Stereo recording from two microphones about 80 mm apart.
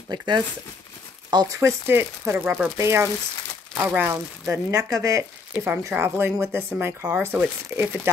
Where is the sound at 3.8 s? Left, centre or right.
Right.